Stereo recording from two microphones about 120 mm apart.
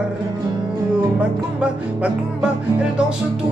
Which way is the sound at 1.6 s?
10° right (ahead or behind).